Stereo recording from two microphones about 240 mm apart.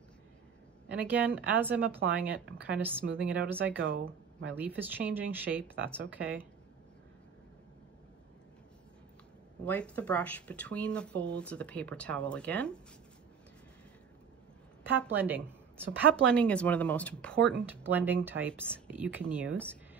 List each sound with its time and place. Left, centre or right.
0.9 s speech: centre
2.4 s speech: right
2.7 s speech: centre
3.7 s speech: right
4.6 s speech: centre
9.7 s speech: centre
14.8 s a woman's voice: centre
16.3 s speech: centre
17.6 s speech: centre